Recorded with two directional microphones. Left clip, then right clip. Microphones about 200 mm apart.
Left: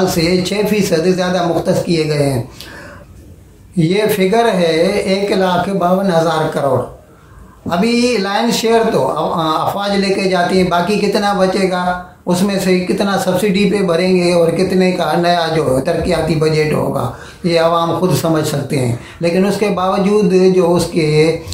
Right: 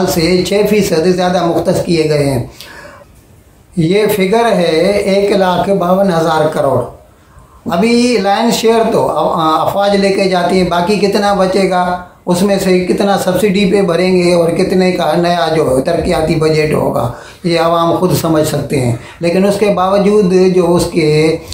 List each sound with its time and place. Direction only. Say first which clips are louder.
0.0 s speech: right 2 dB; 5° right (ahead or behind)
3.8 s speech: right 2 dB; centre (ahead or behind)
7.8 s speech: right 4 dB; 5° right (ahead or behind)